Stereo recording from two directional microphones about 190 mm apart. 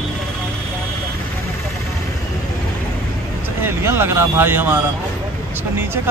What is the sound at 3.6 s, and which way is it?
Speech, 10° right (ahead or behind).